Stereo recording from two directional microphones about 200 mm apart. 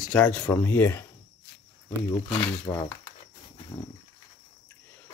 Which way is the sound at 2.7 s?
25° left (ahead or behind).